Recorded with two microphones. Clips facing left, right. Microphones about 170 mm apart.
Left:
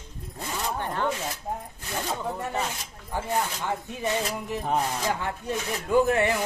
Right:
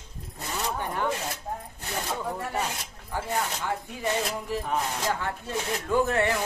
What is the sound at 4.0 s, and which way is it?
Speech, 20° left (ahead or behind).